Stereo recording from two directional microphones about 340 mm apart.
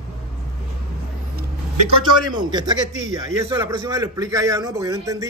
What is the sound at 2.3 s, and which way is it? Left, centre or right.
A man's voice, centre.